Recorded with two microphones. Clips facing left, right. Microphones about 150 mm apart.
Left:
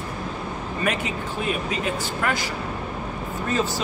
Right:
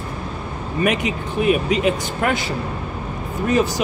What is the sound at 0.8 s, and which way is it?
Speech, 20° right (ahead or behind).